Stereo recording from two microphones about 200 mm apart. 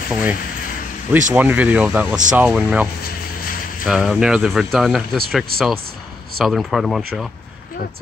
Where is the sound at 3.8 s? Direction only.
Centre (ahead or behind).